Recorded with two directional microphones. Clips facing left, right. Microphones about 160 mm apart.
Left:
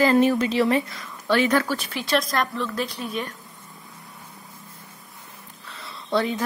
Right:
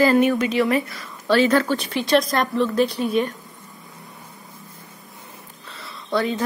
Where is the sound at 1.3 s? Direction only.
15° left (ahead or behind).